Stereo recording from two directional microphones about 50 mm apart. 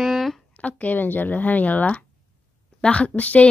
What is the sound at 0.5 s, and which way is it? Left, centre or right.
Speech, left.